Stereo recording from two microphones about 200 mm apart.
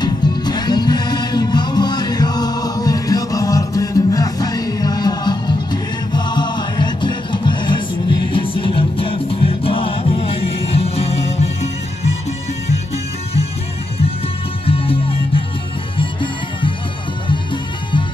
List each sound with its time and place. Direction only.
0.0 s music: 20° left (ahead or behind)
14.7 s music: 30° left (ahead or behind)